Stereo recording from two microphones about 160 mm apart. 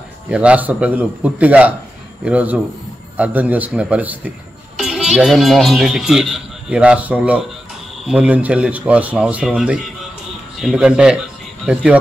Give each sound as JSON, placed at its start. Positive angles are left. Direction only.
{"t": 0.3, "sound": "a man's voice", "side_deg": -5}